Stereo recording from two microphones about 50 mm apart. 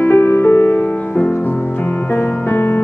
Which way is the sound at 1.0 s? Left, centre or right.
Left.